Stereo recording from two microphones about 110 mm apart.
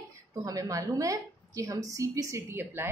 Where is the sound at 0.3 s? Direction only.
35° right (ahead or behind).